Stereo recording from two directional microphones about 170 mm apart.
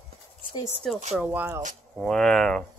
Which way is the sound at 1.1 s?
10° right (ahead or behind).